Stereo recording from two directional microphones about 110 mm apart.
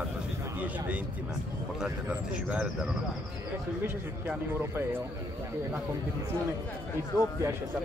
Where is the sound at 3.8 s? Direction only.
20° right (ahead or behind).